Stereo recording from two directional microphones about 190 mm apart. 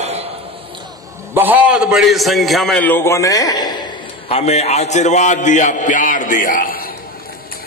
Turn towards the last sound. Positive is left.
turn(degrees=45)  # may be behind; listen again after turning